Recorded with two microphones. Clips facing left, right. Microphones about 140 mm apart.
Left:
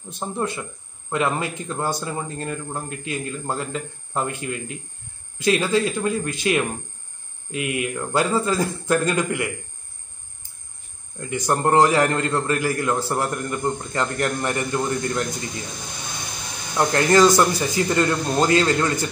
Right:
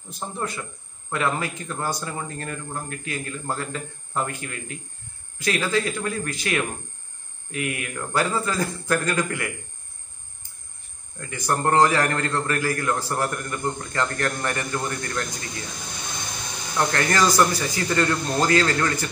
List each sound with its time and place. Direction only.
0.1 s a man's voice: 25° left (ahead or behind)
11.1 s a man's voice: 20° left (ahead or behind)
16.7 s a man's voice: 20° left (ahead or behind)